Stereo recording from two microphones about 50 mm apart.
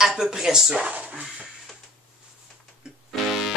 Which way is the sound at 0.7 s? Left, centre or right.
Right.